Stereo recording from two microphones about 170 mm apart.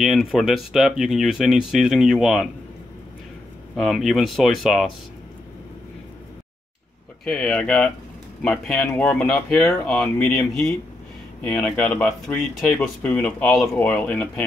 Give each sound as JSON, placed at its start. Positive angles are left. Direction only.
{"t": 0.0, "sound": "speech", "side_deg": 0}
{"t": 3.7, "sound": "speech", "side_deg": 0}
{"t": 7.2, "sound": "speech", "side_deg": 5}